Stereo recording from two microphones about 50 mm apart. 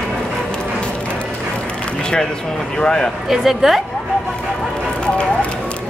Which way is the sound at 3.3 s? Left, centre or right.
Centre.